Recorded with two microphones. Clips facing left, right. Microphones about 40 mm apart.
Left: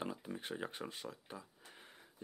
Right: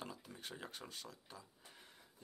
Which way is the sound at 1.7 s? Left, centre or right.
Left.